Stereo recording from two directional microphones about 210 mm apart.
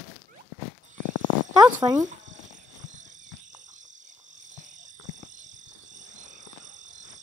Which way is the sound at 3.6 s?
35° right (ahead or behind).